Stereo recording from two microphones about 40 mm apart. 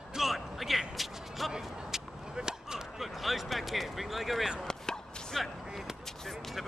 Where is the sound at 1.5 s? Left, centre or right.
Centre.